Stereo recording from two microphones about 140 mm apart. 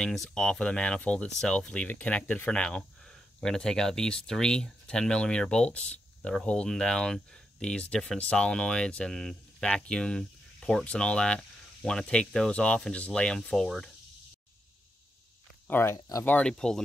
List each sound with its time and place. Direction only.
0.0 s speech: 5° left (ahead or behind)
15.6 s speech: 15° left (ahead or behind)
16.3 s speech: 5° left (ahead or behind)